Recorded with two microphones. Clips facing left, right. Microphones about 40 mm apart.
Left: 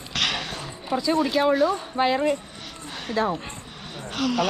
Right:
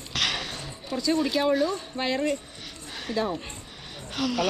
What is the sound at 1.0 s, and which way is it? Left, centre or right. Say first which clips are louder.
Speech: left 2 dB; centre.